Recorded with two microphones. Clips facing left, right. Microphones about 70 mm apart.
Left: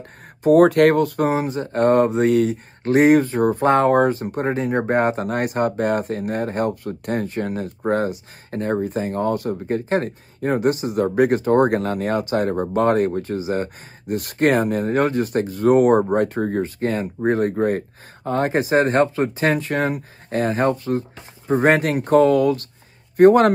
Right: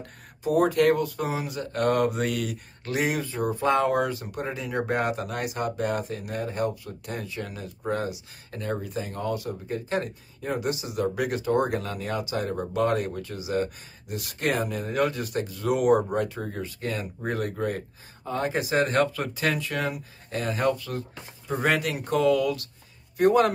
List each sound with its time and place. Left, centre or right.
0.4 s speech: left